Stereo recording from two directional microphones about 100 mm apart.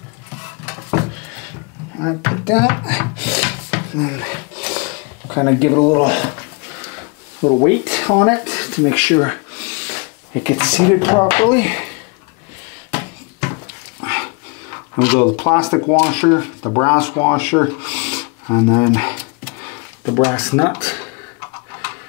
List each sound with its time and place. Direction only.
2.0 s music: 30° left (ahead or behind)
6.0 s speech: 25° left (ahead or behind)
7.4 s speech: 40° left (ahead or behind)
7.7 s speech: 25° left (ahead or behind)
12.9 s a sound: 30° left (ahead or behind)
14.0 s speech: 30° left (ahead or behind)
20.2 s speech: 30° left (ahead or behind)